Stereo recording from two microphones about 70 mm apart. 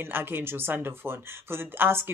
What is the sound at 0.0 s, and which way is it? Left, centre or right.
Speech, right.